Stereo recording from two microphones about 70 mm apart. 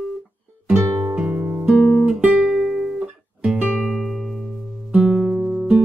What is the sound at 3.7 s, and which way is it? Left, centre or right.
Music, centre.